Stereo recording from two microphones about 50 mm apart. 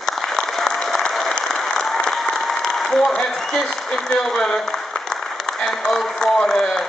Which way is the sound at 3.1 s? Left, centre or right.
Centre.